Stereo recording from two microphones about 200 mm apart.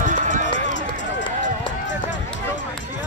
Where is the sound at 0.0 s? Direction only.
40° right (ahead or behind).